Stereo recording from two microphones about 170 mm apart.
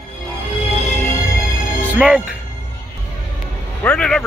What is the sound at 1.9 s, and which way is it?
Speech, 5° right (ahead or behind).